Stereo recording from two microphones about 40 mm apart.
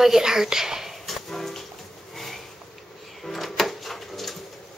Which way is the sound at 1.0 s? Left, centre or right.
Centre.